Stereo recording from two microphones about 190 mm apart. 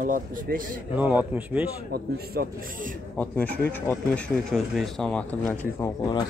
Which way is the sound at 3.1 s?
10° left (ahead or behind).